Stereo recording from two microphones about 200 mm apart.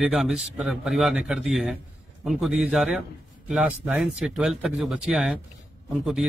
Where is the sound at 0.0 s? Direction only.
Centre (ahead or behind).